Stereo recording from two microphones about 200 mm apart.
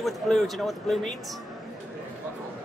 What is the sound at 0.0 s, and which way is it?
A man's voice, centre (ahead or behind).